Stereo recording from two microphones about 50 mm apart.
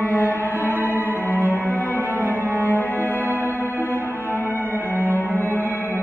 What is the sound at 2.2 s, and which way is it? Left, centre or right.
Cello, right.